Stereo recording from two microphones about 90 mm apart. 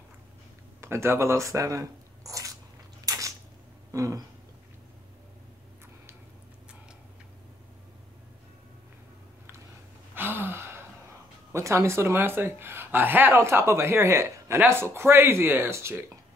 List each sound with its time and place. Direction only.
0.7 s speech: 30° right (ahead or behind)
3.1 s a sound: 40° right (ahead or behind)
10.1 s gasp: 20° right (ahead or behind)
11.5 s speech: 30° right (ahead or behind)